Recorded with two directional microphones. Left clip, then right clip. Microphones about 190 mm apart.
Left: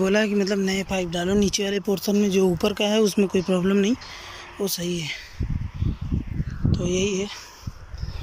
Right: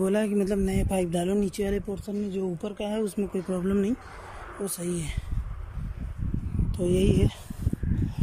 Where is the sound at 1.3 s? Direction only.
5° right (ahead or behind).